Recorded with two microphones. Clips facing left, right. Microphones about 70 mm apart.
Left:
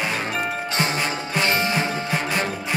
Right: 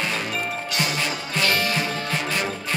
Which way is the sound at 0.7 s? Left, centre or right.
Left.